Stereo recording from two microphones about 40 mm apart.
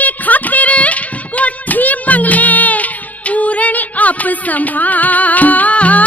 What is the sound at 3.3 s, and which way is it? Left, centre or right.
Music, left.